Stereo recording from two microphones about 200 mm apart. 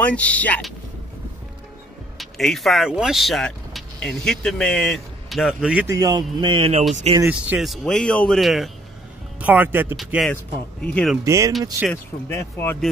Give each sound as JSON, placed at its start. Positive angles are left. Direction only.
{"t": 0.0, "sound": "speech", "side_deg": 5}
{"t": 2.1, "sound": "speech", "side_deg": 0}
{"t": 7.2, "sound": "speech", "side_deg": -10}
{"t": 9.9, "sound": "speech", "side_deg": 0}
{"t": 11.2, "sound": "speech", "side_deg": -15}
{"t": 11.9, "sound": "speech", "side_deg": 10}